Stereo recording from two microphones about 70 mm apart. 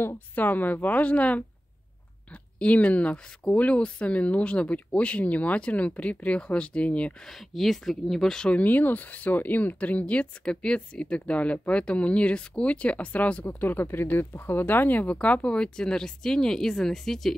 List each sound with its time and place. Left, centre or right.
0.4 s speech: left
2.6 s speech: centre
7.2 s speech: centre
8.5 s speech: left; by 17.4 s centre